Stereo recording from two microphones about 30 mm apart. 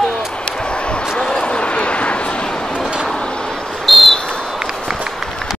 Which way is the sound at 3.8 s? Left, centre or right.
Centre.